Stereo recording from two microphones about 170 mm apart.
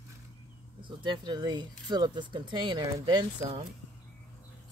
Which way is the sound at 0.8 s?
25° right (ahead or behind).